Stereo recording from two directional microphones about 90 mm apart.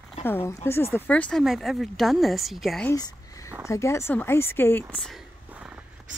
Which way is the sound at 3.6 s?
30° left (ahead or behind).